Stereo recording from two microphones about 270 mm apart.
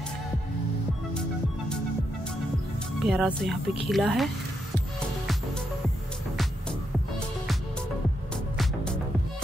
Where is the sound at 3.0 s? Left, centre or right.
Centre.